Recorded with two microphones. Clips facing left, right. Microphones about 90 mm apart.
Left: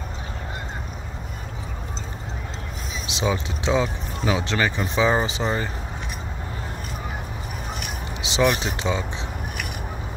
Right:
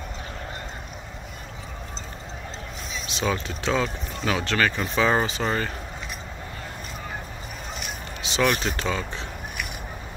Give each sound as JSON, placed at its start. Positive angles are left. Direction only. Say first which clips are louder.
{"t": 3.1, "sound": "speech", "louder": "left 2 dB", "side_deg": 20}
{"t": 8.2, "sound": "basketball bounce", "louder": "left 3 dB", "side_deg": 20}
{"t": 8.5, "sound": "speech", "louder": "left 2 dB", "side_deg": 15}